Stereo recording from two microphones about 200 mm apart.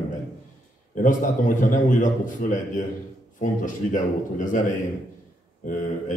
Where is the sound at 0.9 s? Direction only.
40° left (ahead or behind).